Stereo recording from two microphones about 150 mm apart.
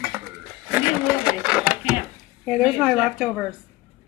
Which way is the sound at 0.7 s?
5° right (ahead or behind).